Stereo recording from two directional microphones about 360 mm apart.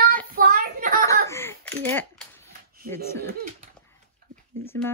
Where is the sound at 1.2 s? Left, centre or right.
Centre.